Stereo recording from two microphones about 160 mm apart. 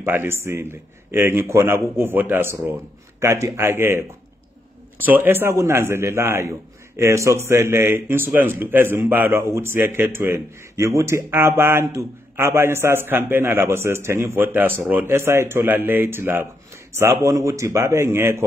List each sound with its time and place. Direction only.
0.0 s a man's voice: 15° right (ahead or behind)
5.0 s a man's voice: 10° right (ahead or behind)